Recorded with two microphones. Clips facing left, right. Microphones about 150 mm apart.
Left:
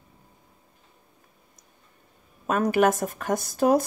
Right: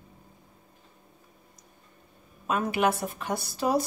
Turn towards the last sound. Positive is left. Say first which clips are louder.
# left 6 dB
turn(degrees=50)  # may be behind; listen again after turning